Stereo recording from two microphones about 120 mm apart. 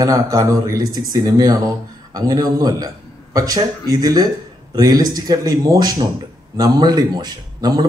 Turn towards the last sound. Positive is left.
turn(degrees=-35)  # may be behind; listen again after turning